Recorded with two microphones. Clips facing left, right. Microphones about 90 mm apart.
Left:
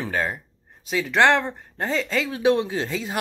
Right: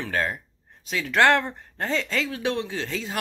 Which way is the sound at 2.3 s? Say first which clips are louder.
Left 7 dB; 15° left (ahead or behind).